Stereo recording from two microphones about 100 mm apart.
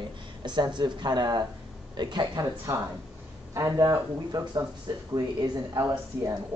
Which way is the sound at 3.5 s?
35° right (ahead or behind).